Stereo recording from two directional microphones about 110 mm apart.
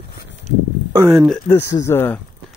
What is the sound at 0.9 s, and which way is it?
Speech, 25° right (ahead or behind).